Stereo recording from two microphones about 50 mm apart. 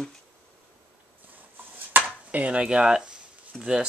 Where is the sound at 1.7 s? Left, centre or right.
Right; by 3.2 s centre.